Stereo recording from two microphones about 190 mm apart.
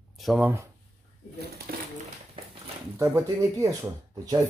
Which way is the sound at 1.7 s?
50° right (ahead or behind).